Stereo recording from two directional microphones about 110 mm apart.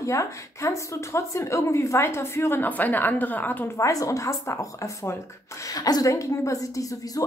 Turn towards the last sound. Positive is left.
turn(degrees=30)  # may be behind; listen again after turning